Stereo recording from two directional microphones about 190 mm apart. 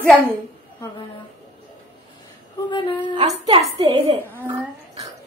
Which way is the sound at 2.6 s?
25° left (ahead or behind).